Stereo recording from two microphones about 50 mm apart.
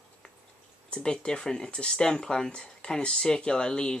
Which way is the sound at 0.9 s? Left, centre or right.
Centre.